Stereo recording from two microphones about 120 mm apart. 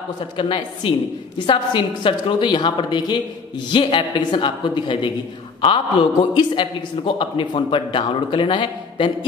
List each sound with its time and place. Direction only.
0.4 s a man's voice: 45° left (ahead or behind)